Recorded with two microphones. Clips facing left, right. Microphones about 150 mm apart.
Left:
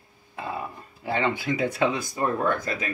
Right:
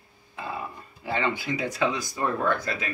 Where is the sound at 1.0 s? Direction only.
40° left (ahead or behind).